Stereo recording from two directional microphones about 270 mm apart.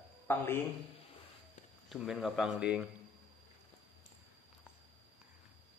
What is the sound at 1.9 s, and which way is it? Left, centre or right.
Speech, centre.